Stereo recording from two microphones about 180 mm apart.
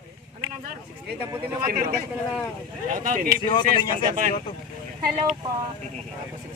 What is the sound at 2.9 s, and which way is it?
Speech, 50° right (ahead or behind).